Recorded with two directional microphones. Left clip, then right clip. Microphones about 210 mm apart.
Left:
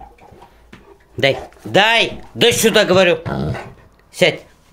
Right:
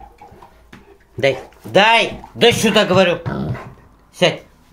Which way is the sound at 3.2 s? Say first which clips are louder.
Left 2 dB; 45° left (ahead or behind).